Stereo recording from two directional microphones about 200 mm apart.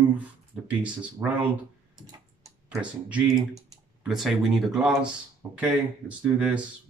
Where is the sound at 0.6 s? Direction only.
5° right (ahead or behind).